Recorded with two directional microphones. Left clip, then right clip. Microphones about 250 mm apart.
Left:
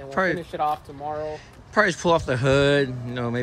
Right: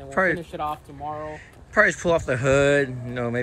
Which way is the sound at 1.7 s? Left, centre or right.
Centre.